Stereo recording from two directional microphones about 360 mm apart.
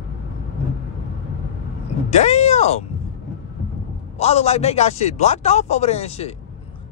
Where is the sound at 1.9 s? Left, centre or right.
Centre.